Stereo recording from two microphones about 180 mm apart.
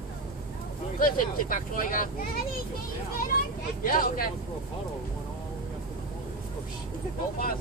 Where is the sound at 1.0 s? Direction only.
50° left (ahead or behind).